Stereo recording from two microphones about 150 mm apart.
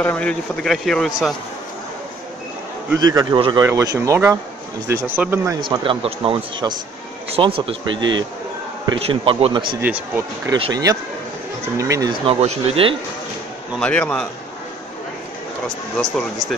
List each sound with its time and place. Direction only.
0.0 s speech: 10° left (ahead or behind)
3.0 s speech: 25° right (ahead or behind)
3.6 s speech: 20° right (ahead or behind)
5.7 s a man's voice: 35° right (ahead or behind)
9.8 s speech: 15° right (ahead or behind)
10.5 s speech: 25° right (ahead or behind)
12.1 s a man's voice: 40° right (ahead or behind)
13.7 s a man's voice: 10° left (ahead or behind)